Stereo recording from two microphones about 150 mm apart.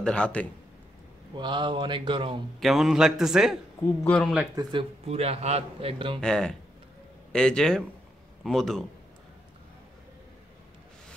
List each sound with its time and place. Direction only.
0.0 s a man's voice: 5° left (ahead or behind)
1.3 s a man's voice: 30° right (ahead or behind)
2.6 s a man's voice: centre (ahead or behind)
4.0 s a man's voice: 10° left (ahead or behind)
4.6 s speech: 30° right (ahead or behind)
5.0 s a man's voice: 40° right (ahead or behind)
6.2 s a man's voice: 5° left (ahead or behind)